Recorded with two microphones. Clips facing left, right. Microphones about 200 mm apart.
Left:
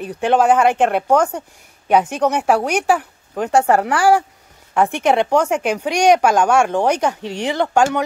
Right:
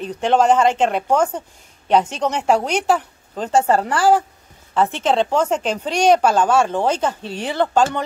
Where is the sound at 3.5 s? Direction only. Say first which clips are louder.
Left 1 dB; 70° left (ahead or behind).